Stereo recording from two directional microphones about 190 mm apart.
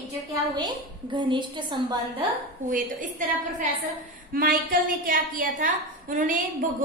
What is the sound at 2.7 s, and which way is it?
A woman's voice, 45° right (ahead or behind).